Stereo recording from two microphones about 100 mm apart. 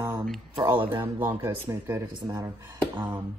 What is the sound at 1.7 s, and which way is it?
Speech, 30° right (ahead or behind).